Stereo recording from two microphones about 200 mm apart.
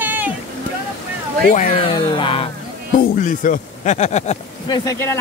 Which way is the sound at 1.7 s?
25° left (ahead or behind).